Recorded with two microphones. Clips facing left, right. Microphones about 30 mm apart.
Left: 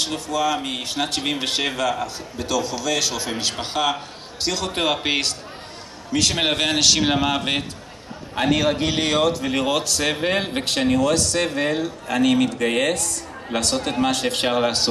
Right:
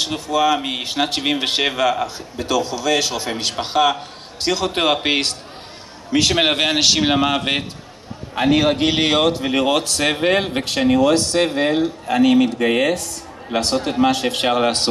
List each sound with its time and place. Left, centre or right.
0.0 s a man's voice: right; by 11.0 s centre
11.0 s a man's voice: right